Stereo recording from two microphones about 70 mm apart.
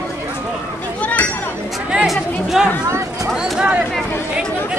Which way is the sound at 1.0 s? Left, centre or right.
Left.